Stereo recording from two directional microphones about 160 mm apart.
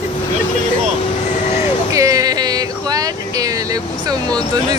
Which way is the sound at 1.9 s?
20° right (ahead or behind).